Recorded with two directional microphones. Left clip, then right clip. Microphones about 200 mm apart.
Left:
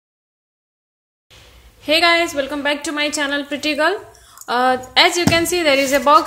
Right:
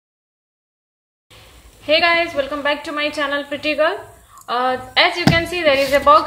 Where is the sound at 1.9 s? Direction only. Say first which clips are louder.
Left 1 dB; 45° left (ahead or behind).